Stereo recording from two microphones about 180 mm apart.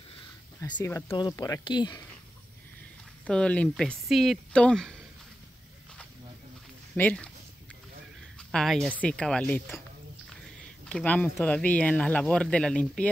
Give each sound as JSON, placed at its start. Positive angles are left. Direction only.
{"t": 0.6, "sound": "speech", "side_deg": 20}
{"t": 3.3, "sound": "speech", "side_deg": 5}
{"t": 7.0, "sound": "speech", "side_deg": 5}
{"t": 8.4, "sound": "a sound", "side_deg": 5}
{"t": 9.0, "sound": "speech", "side_deg": 5}
{"t": 10.9, "sound": "speech", "side_deg": 10}